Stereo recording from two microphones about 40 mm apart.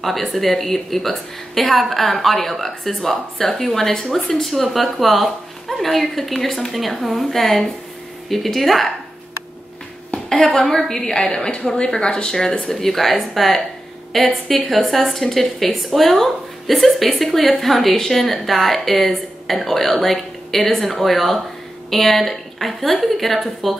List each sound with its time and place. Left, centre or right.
0.0 s speech: centre
10.1 s a sound: left
10.5 s a woman's voice: centre